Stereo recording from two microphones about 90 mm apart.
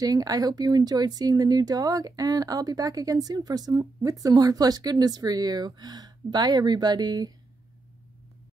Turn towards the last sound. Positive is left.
turn(degrees=-50)  # may be behind; listen again after turning